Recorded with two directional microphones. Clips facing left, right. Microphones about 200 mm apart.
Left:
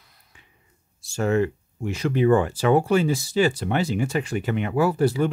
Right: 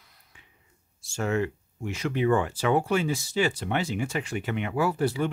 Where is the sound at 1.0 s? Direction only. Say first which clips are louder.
Left 5 dB; 35° left (ahead or behind).